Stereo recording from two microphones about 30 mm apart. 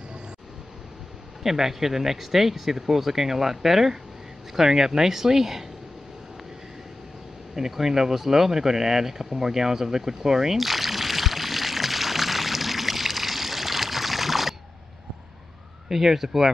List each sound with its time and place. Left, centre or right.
1.4 s speech: centre
7.5 s speech: centre
10.6 s pour: centre
15.9 s speech: centre